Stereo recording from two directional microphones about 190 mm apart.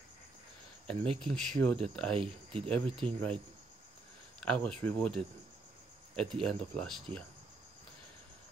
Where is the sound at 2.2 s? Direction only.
30° right (ahead or behind).